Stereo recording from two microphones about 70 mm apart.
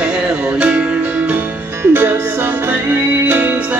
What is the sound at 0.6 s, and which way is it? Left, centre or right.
Music, centre.